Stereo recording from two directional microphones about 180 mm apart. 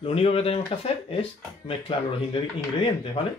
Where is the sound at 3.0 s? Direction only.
30° left (ahead or behind).